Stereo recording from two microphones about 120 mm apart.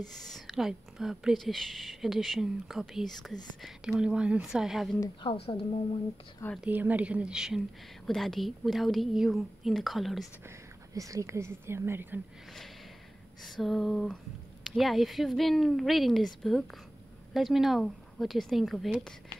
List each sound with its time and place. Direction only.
0.2 s a woman's voice: centre (ahead or behind)
5.2 s a woman's voice: 50° left (ahead or behind)
6.6 s a woman's voice: 15° right (ahead or behind)
11.0 s speech: 25° right (ahead or behind)
13.6 s a woman's voice: centre (ahead or behind)
17.3 s a woman's voice: centre (ahead or behind)